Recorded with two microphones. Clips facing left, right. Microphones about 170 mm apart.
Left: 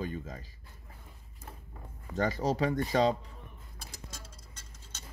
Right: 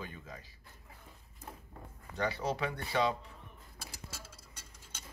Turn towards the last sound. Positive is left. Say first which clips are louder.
# left 1 dB
turn(degrees=-10)  # may be behind; listen again after turning